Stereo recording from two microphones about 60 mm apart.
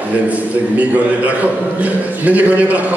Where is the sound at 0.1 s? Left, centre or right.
Right.